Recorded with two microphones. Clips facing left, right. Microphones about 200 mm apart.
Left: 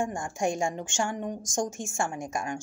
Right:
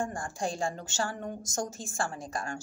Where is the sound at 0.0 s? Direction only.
15° left (ahead or behind).